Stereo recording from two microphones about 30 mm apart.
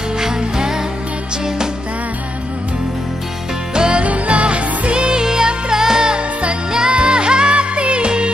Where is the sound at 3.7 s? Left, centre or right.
Right.